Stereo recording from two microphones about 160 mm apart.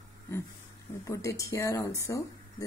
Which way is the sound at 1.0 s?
20° left (ahead or behind).